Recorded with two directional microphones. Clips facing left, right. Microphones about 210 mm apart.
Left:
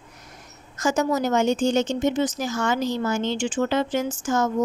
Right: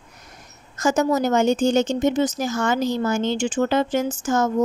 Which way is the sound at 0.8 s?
45° right (ahead or behind).